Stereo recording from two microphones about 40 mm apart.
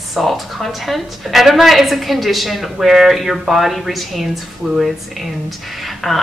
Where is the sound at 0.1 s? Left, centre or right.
Centre.